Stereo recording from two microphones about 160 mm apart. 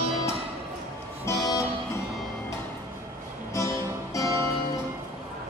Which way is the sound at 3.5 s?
20° left (ahead or behind).